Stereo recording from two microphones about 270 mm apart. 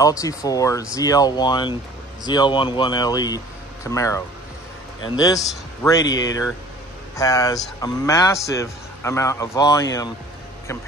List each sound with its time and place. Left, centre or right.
0.0 s speech: centre